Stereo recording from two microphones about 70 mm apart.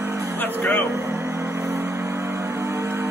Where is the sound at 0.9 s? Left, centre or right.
Right.